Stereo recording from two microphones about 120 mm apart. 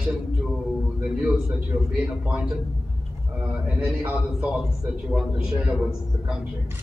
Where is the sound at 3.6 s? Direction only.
10° right (ahead or behind).